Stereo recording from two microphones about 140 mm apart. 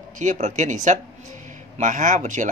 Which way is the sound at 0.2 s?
60° right (ahead or behind).